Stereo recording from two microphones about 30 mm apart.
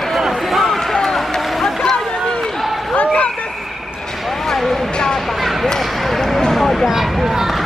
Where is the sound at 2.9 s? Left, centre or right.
Left.